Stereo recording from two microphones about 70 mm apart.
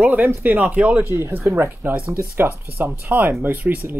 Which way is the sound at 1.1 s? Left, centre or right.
Right.